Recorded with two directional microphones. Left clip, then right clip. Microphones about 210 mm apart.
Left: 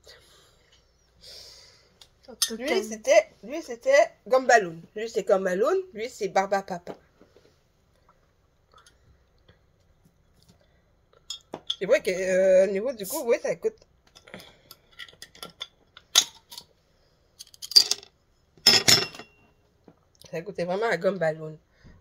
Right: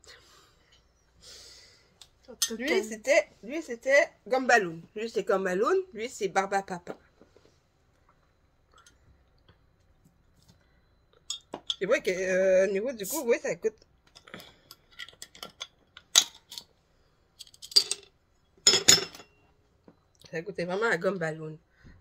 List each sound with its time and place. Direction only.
1.2 s snort: 15° right (ahead or behind)
2.2 s dishes: 10° right (ahead or behind)
2.9 s speech: 10° right (ahead or behind)
11.2 s chink: 20° left (ahead or behind)
11.8 s speech: 5° right (ahead or behind)
14.2 s a sound: 5° right (ahead or behind)
14.7 s a sound: 20° left (ahead or behind); by 19.0 s 35° left (ahead or behind)
20.2 s speech: 10° right (ahead or behind)